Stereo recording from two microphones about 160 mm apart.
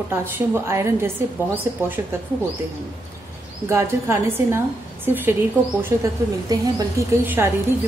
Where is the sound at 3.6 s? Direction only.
15° right (ahead or behind).